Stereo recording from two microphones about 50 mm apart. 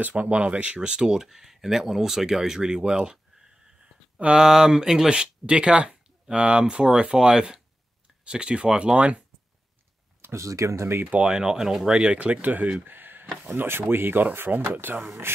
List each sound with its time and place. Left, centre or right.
0.0 s speech: right
4.2 s speech: centre
10.3 s speech: right
11.1 s speech: right
12.8 s a sound: right
13.6 s speech: right